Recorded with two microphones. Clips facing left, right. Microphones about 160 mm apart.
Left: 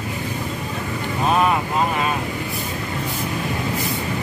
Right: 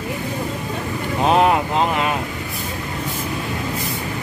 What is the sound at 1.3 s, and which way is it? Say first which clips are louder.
Speech: right 3 dB; 75° right (ahead or behind).